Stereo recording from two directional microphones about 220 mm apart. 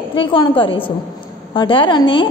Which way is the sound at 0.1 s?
25° left (ahead or behind).